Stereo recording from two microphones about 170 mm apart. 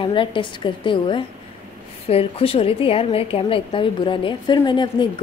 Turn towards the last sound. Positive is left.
turn(degrees=25)  # may be behind; listen again after turning